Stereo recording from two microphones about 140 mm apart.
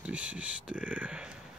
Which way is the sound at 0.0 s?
10° right (ahead or behind).